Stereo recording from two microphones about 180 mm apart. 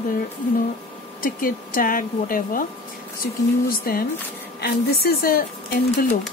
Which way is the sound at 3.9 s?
55° left (ahead or behind).